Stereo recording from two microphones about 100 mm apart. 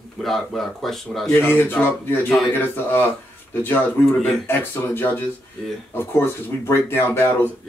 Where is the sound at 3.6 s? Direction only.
20° left (ahead or behind).